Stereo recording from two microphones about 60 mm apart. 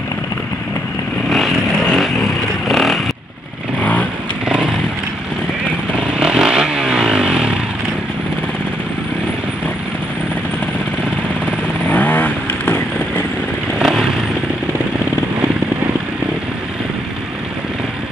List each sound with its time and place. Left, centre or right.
1.3 s vehicle: centre
3.8 s motorcycle: left
6.1 s vehicle: centre
11.9 s vehicle: left
13.7 s vehicle: centre